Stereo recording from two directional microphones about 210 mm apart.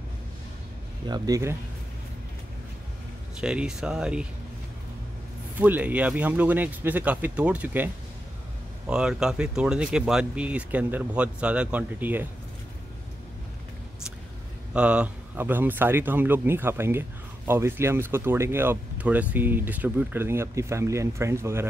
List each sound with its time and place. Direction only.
1.0 s speech: 20° right (ahead or behind)
3.3 s speech: 5° right (ahead or behind)
5.6 s speech: 10° right (ahead or behind)
14.7 s speech: 5° right (ahead or behind)